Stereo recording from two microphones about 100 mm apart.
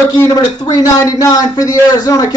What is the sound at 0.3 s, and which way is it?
A man's voice, 40° left (ahead or behind).